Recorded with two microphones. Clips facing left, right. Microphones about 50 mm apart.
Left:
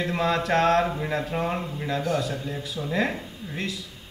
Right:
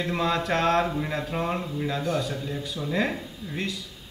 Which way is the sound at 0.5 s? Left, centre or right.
Left.